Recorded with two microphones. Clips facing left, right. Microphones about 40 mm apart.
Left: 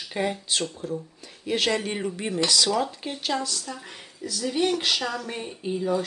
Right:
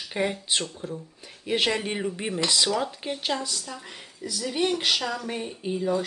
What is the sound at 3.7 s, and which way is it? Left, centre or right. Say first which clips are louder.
Speech: left 1 dB; centre.